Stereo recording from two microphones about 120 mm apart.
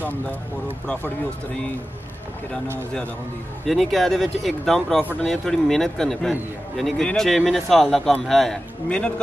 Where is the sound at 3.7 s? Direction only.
Centre (ahead or behind).